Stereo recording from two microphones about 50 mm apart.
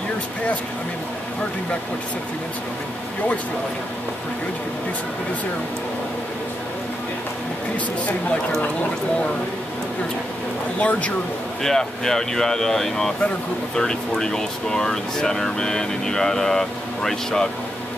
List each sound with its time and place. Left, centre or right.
10.8 s speech: left
11.6 s speech: centre